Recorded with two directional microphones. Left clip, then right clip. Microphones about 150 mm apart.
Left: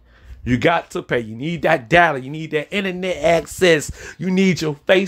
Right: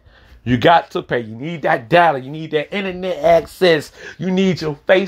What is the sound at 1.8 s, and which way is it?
A man's voice, 20° left (ahead or behind).